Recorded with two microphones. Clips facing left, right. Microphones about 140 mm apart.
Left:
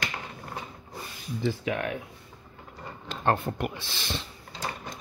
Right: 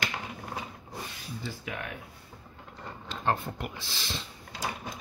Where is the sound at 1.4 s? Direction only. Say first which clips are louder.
Left 11 dB; 70° left (ahead or behind).